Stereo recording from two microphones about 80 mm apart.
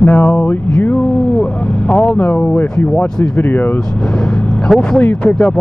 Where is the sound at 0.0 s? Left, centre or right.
Left.